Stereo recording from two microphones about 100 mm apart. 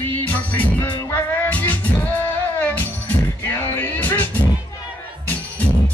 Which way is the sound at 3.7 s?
15° left (ahead or behind).